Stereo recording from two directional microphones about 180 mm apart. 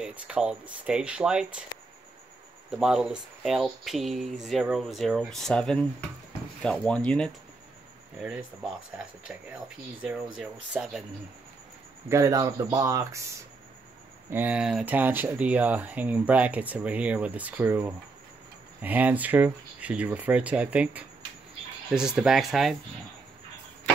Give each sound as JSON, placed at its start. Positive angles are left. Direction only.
{"t": 0.0, "sound": "speech", "side_deg": -5}
{"t": 2.7, "sound": "speech", "side_deg": -5}
{"t": 9.3, "sound": "speech", "side_deg": -5}
{"t": 12.1, "sound": "speech", "side_deg": -20}
{"t": 14.3, "sound": "speech", "side_deg": -10}